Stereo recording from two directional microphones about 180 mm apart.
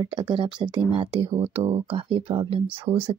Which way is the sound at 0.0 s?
25° right (ahead or behind).